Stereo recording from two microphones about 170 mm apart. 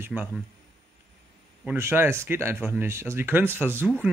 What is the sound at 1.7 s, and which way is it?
Speech, 15° right (ahead or behind).